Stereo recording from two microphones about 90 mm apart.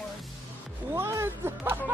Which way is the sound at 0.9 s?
30° right (ahead or behind).